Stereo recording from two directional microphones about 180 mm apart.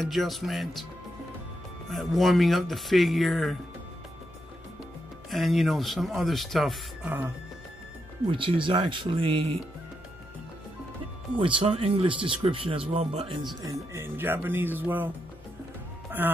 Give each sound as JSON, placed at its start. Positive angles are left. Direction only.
{"t": 0.0, "sound": "speech", "side_deg": 0}
{"t": 1.9, "sound": "speech", "side_deg": 0}
{"t": 5.3, "sound": "speech", "side_deg": 0}
{"t": 8.3, "sound": "speech", "side_deg": -30}
{"t": 11.3, "sound": "speech", "side_deg": -30}
{"t": 13.6, "sound": "speech", "side_deg": -20}
{"t": 16.2, "sound": "speech", "side_deg": -10}